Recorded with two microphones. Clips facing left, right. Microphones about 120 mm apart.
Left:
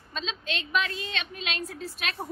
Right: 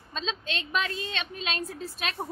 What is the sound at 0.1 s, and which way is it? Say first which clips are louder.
A woman's voice: right 1 dB; 35° right (ahead or behind).